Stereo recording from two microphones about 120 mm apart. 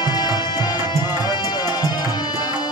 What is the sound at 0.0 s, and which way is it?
Music, 35° left (ahead or behind).